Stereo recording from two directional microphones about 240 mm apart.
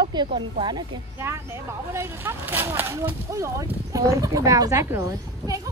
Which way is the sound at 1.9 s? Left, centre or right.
Centre.